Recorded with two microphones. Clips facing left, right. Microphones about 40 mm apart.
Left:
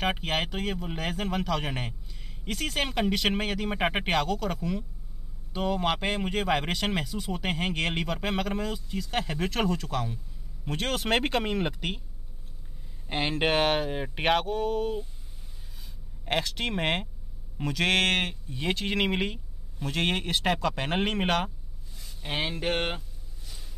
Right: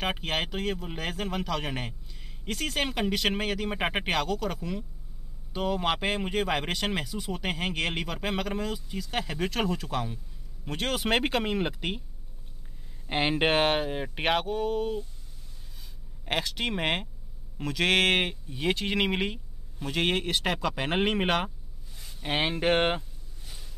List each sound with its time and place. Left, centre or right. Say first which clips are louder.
0.0 s speech: left 1 dB; centre
13.0 s speech: right 2 dB; centre
16.3 s speech: left 1 dB; centre
21.9 s a sound: right 3 dB; centre